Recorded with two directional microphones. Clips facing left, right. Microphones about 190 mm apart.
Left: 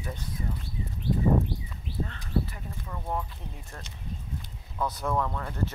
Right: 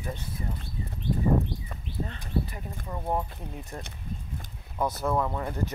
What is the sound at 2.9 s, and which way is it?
Speech, 25° right (ahead or behind).